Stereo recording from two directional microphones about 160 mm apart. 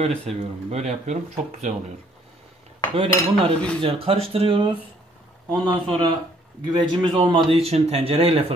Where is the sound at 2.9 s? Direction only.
35° right (ahead or behind).